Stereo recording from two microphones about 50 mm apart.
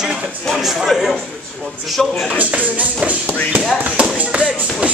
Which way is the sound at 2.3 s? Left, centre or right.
Right.